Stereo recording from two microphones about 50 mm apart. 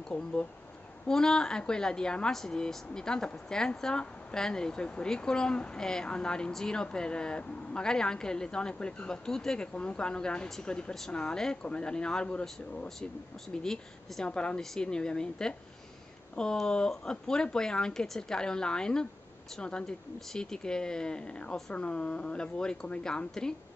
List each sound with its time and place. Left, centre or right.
0.1 s speech: left
1.0 s speech: centre
9.8 s speech: left
13.6 s speech: centre